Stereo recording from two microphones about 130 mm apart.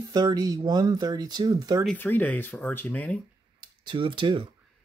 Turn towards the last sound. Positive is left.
turn(degrees=-40)  # may be behind; listen again after turning